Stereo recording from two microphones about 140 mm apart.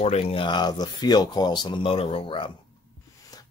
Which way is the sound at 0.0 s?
45° left (ahead or behind).